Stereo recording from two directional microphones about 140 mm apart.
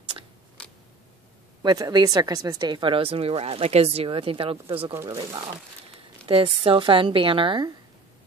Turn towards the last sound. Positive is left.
turn(degrees=-35)  # may be behind; listen again after turning